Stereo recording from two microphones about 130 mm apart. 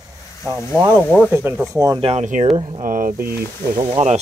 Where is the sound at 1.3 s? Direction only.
20° right (ahead or behind).